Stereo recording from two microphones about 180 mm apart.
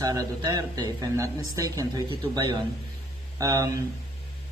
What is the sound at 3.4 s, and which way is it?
Speech, 20° right (ahead or behind).